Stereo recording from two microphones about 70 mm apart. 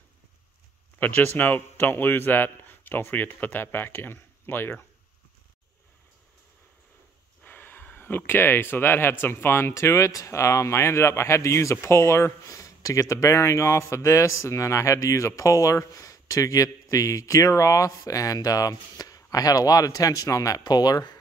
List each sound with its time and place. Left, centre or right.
0.9 s a man's voice: left
7.4 s speech: left
20.6 s speech: left